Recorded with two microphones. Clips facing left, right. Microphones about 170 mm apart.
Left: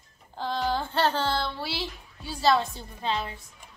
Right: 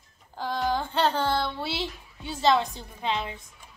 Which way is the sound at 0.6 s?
15° right (ahead or behind).